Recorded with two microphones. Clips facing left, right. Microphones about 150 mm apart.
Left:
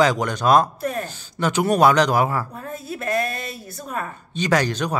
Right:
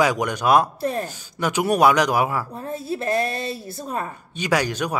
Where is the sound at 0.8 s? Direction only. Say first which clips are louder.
Right 1 dB; 30° right (ahead or behind).